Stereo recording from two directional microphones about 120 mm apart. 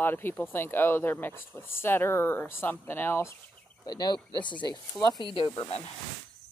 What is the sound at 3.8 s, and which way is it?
Speech, 35° left (ahead or behind).